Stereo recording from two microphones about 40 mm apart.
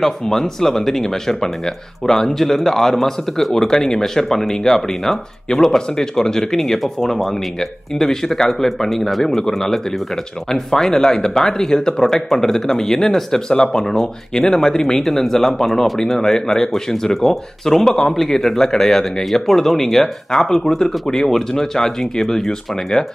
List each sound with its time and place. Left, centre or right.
0.0 s speech: centre